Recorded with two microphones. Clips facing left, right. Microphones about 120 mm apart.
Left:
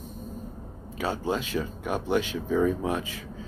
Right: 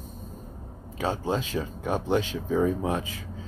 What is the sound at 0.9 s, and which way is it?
Speech, 30° right (ahead or behind).